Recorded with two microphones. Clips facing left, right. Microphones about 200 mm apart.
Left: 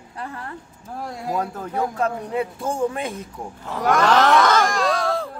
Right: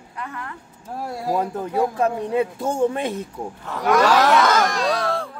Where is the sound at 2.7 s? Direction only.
25° right (ahead or behind).